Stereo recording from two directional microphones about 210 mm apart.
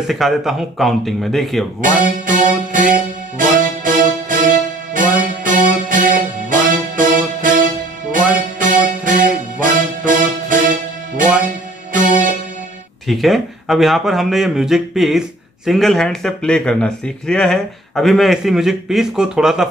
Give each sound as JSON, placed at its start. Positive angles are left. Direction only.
{"t": 0.0, "sound": "speech", "side_deg": 0}
{"t": 1.8, "sound": "music", "side_deg": -40}
{"t": 11.9, "sound": "music", "side_deg": -40}
{"t": 13.0, "sound": "speech", "side_deg": 0}